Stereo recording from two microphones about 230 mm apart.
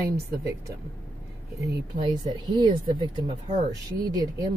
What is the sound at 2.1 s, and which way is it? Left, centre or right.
Speech, centre.